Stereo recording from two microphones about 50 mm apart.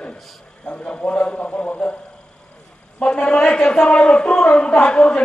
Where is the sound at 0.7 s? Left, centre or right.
Left.